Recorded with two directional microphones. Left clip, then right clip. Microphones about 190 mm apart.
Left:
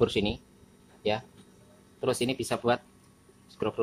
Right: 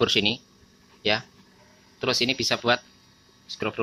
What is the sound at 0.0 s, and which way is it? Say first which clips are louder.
Speech: right 5 dB; 5° right (ahead or behind).